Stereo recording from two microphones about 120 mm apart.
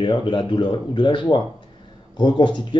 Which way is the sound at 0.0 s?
40° left (ahead or behind).